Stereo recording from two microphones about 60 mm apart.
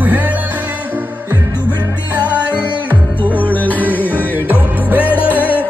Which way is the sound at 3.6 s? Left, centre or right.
Left.